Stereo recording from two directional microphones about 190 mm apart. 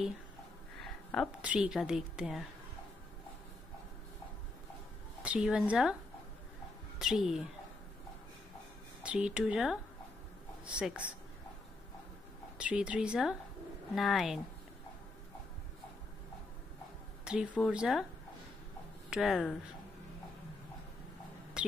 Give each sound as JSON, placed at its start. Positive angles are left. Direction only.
{"t": 0.7, "sound": "a sound", "side_deg": 5}
{"t": 1.4, "sound": "speech", "side_deg": -5}
{"t": 5.2, "sound": "speech", "side_deg": -5}
{"t": 7.0, "sound": "speech", "side_deg": 0}
{"t": 9.0, "sound": "a woman's voice", "side_deg": -5}
{"t": 12.5, "sound": "speech", "side_deg": -5}
{"t": 17.2, "sound": "a sound", "side_deg": -5}
{"t": 17.6, "sound": "speech", "side_deg": 0}
{"t": 19.0, "sound": "speech", "side_deg": 0}
{"t": 21.6, "sound": "a sound", "side_deg": -5}